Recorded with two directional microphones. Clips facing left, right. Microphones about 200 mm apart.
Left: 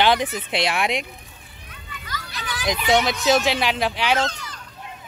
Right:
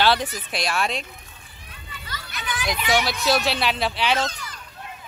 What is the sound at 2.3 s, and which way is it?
Children playing, 40° left (ahead or behind).